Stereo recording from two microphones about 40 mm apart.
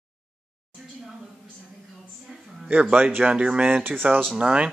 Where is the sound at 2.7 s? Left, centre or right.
Right.